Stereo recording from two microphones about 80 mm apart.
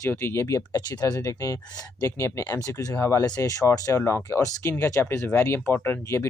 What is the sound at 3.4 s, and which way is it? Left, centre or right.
Speech, left.